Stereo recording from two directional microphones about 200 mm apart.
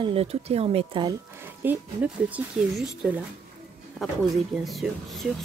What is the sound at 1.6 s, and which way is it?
Speech, 5° right (ahead or behind).